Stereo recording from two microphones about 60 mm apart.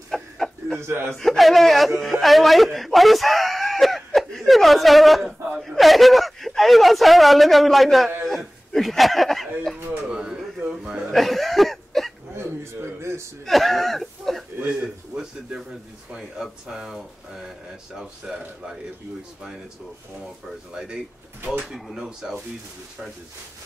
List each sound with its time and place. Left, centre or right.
0.1 s a sound: centre
0.7 s speech: right
1.1 s speech: centre
8.3 s a sound: centre
10.0 s a sound: centre
11.1 s cough: centre
12.4 s a sound: right
13.5 s speech: centre
14.7 s a man's voice: centre
20.7 s speech: centre
21.6 s speech: centre
21.9 s speech: centre